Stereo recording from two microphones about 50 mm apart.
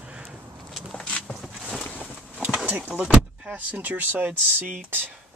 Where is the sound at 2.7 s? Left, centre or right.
Right.